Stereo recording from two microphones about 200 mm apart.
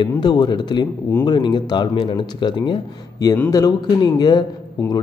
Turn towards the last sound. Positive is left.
turn(degrees=20)  # may be behind; listen again after turning